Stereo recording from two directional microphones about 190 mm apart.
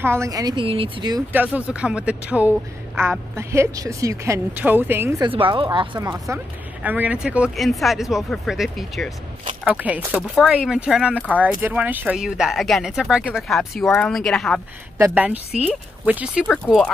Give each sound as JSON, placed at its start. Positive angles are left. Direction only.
{"t": 0.0, "sound": "speech", "side_deg": -15}
{"t": 1.3, "sound": "a woman's voice", "side_deg": -10}
{"t": 5.2, "sound": "a woman's voice", "side_deg": -25}
{"t": 15.0, "sound": "a woman's voice", "side_deg": -10}